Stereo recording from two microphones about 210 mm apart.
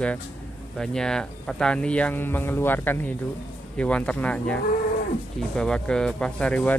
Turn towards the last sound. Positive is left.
turn(degrees=5)  # may be behind; listen again after turning